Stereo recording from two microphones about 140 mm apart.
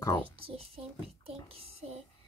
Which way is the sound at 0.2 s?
40° right (ahead or behind).